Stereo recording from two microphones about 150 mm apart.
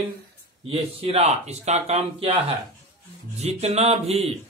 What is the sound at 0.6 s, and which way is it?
Speech, 40° right (ahead or behind).